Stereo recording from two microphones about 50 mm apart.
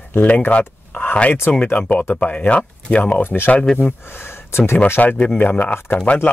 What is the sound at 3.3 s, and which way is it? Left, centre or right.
Speech, left.